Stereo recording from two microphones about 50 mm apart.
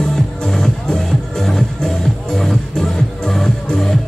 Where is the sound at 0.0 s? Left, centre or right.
Centre.